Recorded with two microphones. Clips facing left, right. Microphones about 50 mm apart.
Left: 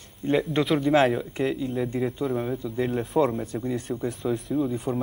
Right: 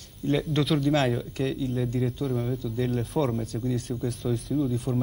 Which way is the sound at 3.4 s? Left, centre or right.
Left.